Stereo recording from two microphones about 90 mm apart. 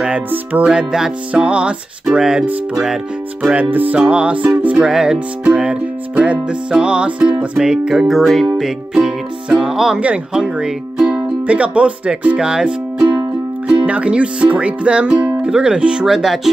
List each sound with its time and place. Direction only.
0.3 s speech: 20° right (ahead or behind)
0.7 s music: 5° right (ahead or behind)
1.3 s speech: 10° right (ahead or behind)
3.4 s speech: 15° right (ahead or behind)
7.5 s music: 10° right (ahead or behind)
8.5 s speech: 5° right (ahead or behind)